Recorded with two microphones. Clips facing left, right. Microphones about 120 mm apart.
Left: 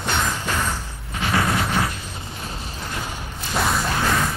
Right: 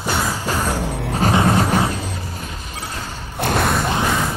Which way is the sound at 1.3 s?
25° right (ahead or behind).